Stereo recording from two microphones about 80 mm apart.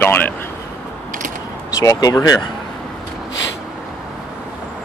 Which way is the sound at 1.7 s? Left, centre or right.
Left.